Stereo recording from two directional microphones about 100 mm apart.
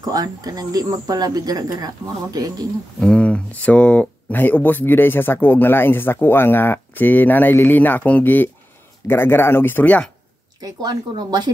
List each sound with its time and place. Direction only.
0.0 s speech: 40° right (ahead or behind)
3.0 s speech: 10° left (ahead or behind)
10.6 s speech: 40° right (ahead or behind)